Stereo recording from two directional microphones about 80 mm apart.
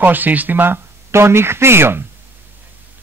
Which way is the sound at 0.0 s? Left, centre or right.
Right.